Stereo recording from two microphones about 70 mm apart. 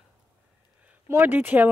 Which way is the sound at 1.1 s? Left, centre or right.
Right.